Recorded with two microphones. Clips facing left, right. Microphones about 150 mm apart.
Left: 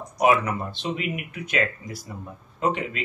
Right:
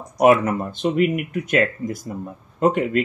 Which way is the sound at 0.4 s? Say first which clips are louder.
Right 6 dB; 45° right (ahead or behind).